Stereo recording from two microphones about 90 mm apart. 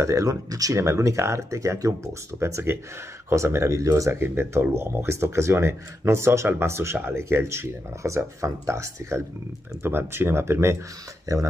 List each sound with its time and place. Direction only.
0.0 s speech: 35° right (ahead or behind)